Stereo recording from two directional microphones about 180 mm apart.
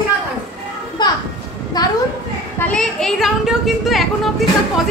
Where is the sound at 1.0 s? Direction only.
25° left (ahead or behind).